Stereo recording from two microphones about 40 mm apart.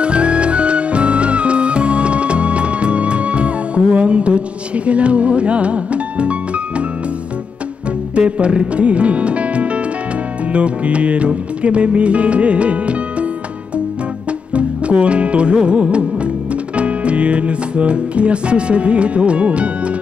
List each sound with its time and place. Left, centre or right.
0.0 s music: right
8.1 s music: right
14.5 s music: right